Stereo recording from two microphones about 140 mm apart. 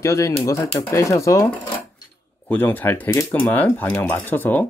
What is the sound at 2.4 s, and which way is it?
Speech, 15° left (ahead or behind).